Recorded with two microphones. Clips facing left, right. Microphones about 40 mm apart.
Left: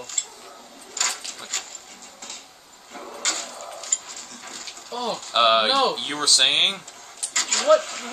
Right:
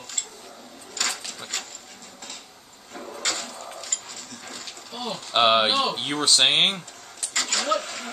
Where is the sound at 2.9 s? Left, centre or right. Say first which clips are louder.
Even; centre.